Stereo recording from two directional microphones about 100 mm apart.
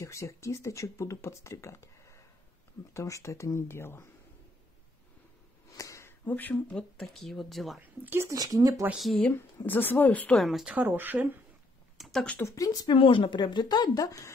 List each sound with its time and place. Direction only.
0.0 s speech: 30° left (ahead or behind)
5.7 s a sound: 35° left (ahead or behind)
6.2 s speech: 15° left (ahead or behind); by 7.8 s centre (ahead or behind)
7.8 s speech: 20° right (ahead or behind)
8.4 s speech: 35° right (ahead or behind)
8.9 s speech: centre (ahead or behind)
9.3 s a woman's voice: 20° left (ahead or behind)
10.4 s speech: 5° right (ahead or behind)
10.8 s speech: 20° right (ahead or behind)
12.0 s a sound: 5° left (ahead or behind)
12.5 s speech: 40° left (ahead or behind)